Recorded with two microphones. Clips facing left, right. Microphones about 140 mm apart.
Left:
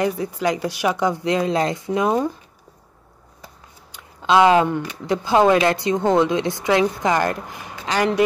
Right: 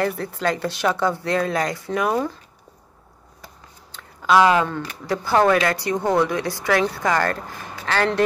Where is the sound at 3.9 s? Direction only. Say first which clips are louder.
Left 1 dB; 20° left (ahead or behind).